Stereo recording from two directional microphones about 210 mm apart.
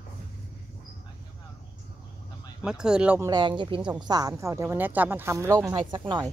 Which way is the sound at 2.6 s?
5° right (ahead or behind).